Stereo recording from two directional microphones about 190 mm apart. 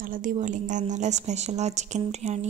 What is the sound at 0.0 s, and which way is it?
Speech, 45° right (ahead or behind).